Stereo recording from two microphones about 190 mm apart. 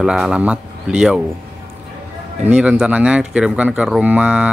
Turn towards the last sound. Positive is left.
turn(degrees=-5)  # may be behind; listen again after turning